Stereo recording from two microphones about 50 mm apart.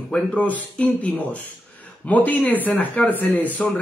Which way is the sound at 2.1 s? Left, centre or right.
Left.